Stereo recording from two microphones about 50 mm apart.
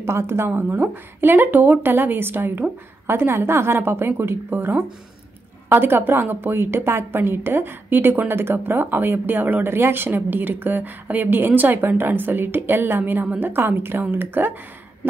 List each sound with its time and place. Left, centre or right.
0.0 s a woman's voice: right
0.5 s a woman's voice: right